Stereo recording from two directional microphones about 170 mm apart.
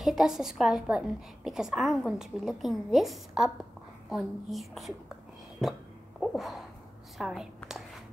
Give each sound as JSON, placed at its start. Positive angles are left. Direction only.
{"t": 0.0, "sound": "a woman's voice", "side_deg": 0}
{"t": 5.6, "sound": "hiccup", "side_deg": 0}
{"t": 7.2, "sound": "a woman's voice", "side_deg": -5}